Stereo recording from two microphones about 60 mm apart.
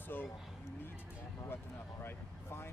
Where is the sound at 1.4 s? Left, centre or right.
Left.